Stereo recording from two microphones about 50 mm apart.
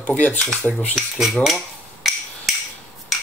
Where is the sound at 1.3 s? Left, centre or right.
Centre.